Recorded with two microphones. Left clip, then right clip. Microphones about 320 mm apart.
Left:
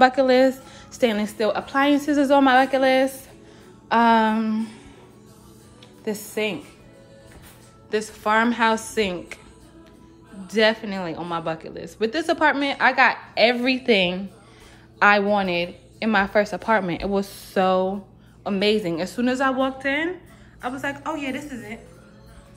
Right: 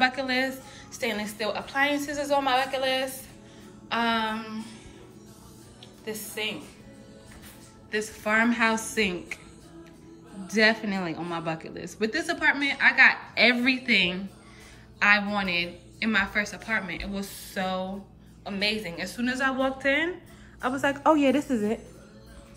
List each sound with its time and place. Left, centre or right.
0.0 s a woman's voice: centre
3.9 s a woman's voice: centre
6.0 s a woman's voice: centre
7.9 s a woman's voice: centre
10.4 s a woman's voice: centre